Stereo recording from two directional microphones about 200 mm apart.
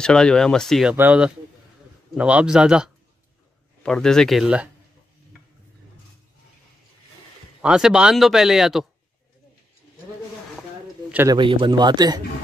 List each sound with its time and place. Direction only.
0.0 s speech: 5° left (ahead or behind)
7.6 s speech: 5° right (ahead or behind)
11.2 s a man's voice: 25° right (ahead or behind)